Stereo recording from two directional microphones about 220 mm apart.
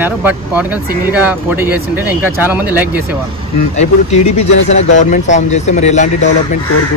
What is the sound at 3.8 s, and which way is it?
Speech, 30° left (ahead or behind).